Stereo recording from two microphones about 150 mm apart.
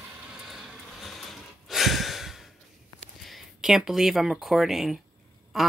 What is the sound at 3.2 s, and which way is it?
Speech, centre (ahead or behind).